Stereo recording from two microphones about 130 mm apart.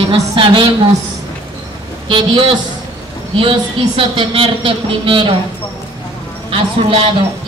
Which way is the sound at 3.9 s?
40° right (ahead or behind).